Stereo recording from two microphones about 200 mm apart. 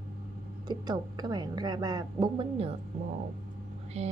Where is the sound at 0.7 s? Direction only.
20° right (ahead or behind).